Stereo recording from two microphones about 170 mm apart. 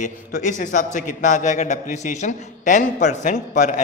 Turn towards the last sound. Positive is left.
turn(degrees=45)  # may be behind; listen again after turning